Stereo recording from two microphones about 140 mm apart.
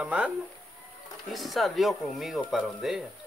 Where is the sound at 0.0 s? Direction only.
10° right (ahead or behind).